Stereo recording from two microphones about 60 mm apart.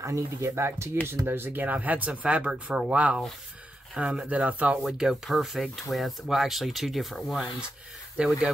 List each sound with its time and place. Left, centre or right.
0.0 s speech: right
1.6 s speech: right
4.8 s speech: centre
8.2 s speech: centre